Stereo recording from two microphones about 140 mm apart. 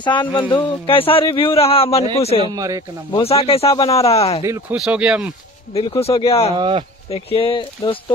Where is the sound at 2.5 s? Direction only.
25° right (ahead or behind).